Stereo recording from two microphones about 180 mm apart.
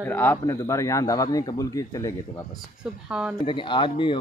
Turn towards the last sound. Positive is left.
turn(degrees=30)  # may be behind; listen again after turning